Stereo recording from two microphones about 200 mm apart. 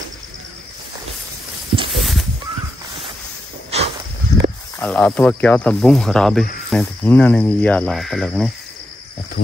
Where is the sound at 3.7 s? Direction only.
30° right (ahead or behind).